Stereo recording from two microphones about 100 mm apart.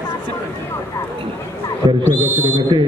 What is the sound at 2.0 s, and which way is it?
Speech, 20° left (ahead or behind).